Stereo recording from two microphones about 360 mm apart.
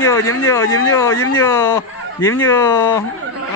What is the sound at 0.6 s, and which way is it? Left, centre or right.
Speech, left.